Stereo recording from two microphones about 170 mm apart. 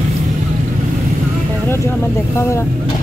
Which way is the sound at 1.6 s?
15° left (ahead or behind).